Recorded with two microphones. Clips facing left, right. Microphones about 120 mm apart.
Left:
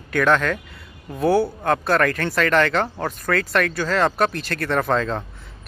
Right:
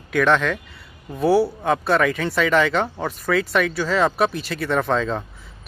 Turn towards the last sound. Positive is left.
turn(degrees=0)  # may be behind; listen again after turning